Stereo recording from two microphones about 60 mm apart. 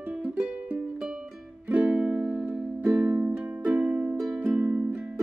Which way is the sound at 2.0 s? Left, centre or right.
Centre.